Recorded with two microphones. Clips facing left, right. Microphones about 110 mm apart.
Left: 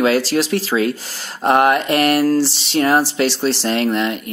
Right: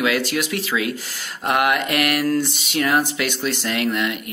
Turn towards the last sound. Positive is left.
turn(degrees=35)  # may be behind; listen again after turning